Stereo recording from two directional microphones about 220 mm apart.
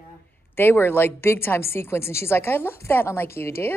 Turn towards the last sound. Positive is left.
turn(degrees=10)  # may be behind; listen again after turning